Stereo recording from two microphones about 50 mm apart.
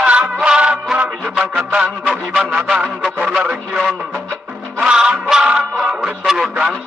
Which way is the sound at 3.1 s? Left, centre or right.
Right.